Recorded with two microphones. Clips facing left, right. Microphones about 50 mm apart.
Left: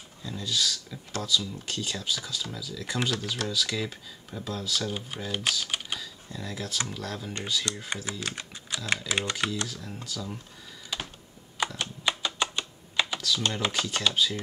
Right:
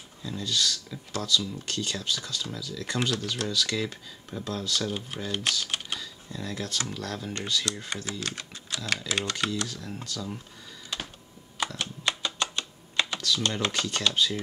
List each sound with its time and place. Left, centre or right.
0.2 s speech: centre
7.9 s speech: centre
9.7 s speech: centre
11.6 s computer keyboard: centre